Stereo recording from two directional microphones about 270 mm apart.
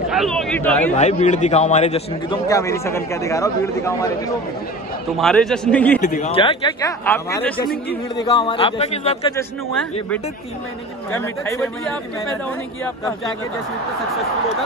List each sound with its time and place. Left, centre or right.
0.1 s a man's voice: centre
0.9 s a man's voice: left
5.1 s a man's voice: centre
5.9 s speech: left
11.1 s a man's voice: centre